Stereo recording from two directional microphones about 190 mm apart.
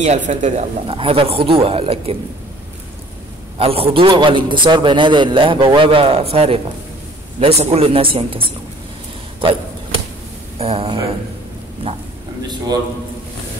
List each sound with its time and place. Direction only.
0.0 s speech: 40° right (ahead or behind)
3.5 s a man's voice: 30° right (ahead or behind)
10.6 s speech: 30° right (ahead or behind)